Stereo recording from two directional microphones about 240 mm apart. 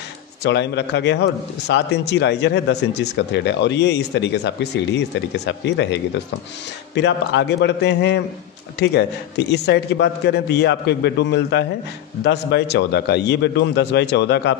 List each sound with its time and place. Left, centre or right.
0.4 s a man's voice: left
7.0 s a man's voice: left